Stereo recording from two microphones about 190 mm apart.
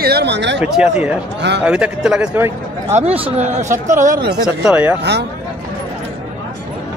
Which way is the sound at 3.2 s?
35° right (ahead or behind).